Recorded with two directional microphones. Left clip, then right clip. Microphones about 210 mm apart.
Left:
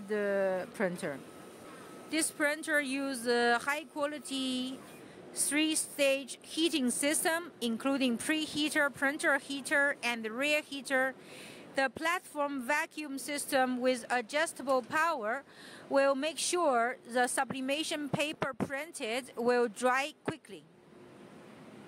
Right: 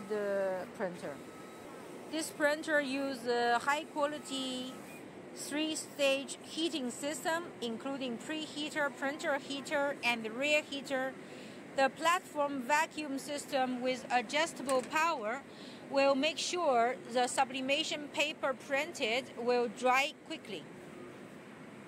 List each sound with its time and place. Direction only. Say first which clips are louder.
0.1 s speech: left 3 dB; 45° left (ahead or behind)